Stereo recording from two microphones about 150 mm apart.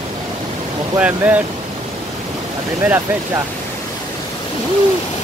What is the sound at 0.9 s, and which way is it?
Speech, 10° right (ahead or behind).